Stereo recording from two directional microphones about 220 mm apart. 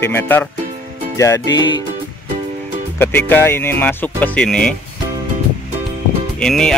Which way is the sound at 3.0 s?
10° left (ahead or behind).